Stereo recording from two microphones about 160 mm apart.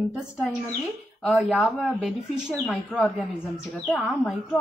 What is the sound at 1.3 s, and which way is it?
A woman's voice, 5° left (ahead or behind).